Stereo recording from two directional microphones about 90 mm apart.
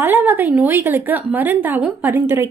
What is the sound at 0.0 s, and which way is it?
A woman's voice, 20° right (ahead or behind).